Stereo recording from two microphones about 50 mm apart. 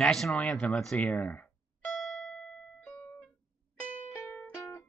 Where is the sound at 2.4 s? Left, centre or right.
Centre.